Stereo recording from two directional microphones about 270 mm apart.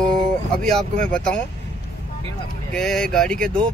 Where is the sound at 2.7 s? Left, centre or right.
Centre.